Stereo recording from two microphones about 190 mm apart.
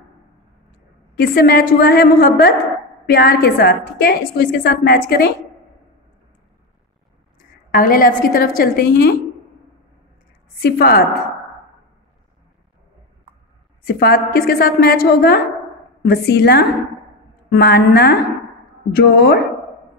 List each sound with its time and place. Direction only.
1.1 s a woman's voice: 55° left (ahead or behind)
7.7 s a woman's voice: 45° left (ahead or behind)
10.6 s a woman's voice: 50° left (ahead or behind)
13.8 s a woman's voice: 55° left (ahead or behind)